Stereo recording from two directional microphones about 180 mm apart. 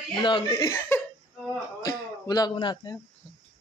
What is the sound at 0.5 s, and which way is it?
Speech, 15° left (ahead or behind).